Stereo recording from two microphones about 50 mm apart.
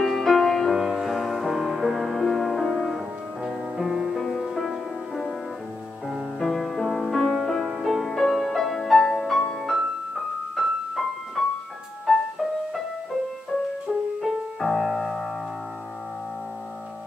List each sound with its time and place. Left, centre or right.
0.0 s music: centre
0.7 s music: centre
3.4 s music: centre
6.0 s music: centre
7.6 s music: centre
14.2 s music: centre